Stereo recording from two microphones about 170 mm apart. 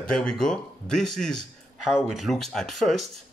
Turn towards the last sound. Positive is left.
turn(degrees=0)  # may be behind; listen again after turning